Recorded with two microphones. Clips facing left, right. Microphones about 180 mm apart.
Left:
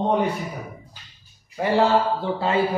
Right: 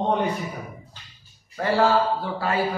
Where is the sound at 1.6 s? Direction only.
20° left (ahead or behind).